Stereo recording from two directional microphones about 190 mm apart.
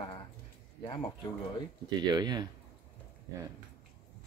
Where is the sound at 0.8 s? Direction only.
25° left (ahead or behind).